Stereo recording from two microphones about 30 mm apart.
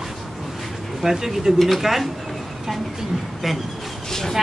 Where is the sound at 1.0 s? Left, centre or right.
Centre.